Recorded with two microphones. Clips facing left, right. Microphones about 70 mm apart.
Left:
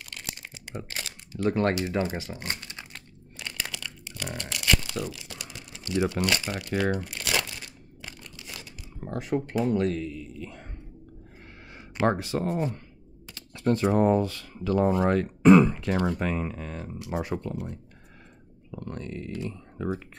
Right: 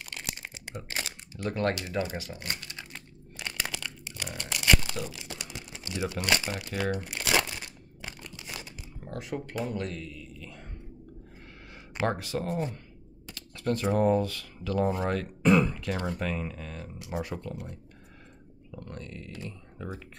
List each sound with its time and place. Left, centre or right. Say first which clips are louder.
0.0 s crumpling: right 1 dB; right
0.8 s typing: right 2 dB; right
1.5 s speech: left 3 dB; left
3.3 s a sound: right 1 dB; right
4.4 s typing: right 1 dB; right
5.9 s speech: left 7 dB; left
6.2 s speech: left 1 dB; right
7.1 s crumpling: right 2 dB; right
9.0 s speech: left 7 dB; left
12.0 s speech: left 4 dB; left
18.7 s speech: left 6 dB; left